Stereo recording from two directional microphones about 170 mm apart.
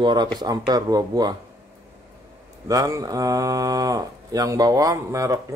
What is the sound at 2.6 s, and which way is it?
Speech, 20° right (ahead or behind).